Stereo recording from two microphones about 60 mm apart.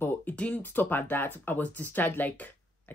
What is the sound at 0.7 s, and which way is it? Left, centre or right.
Speech, left.